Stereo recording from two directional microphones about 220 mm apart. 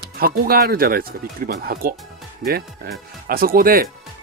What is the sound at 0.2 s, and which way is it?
Speech, 45° right (ahead or behind).